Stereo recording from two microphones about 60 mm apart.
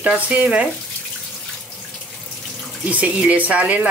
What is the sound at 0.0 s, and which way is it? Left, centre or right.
Speech, right.